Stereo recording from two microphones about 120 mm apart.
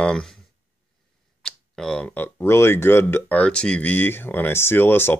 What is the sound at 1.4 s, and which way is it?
Speech, 5° left (ahead or behind).